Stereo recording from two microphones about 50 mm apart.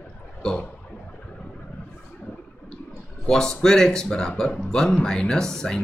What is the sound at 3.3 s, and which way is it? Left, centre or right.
Speech, centre.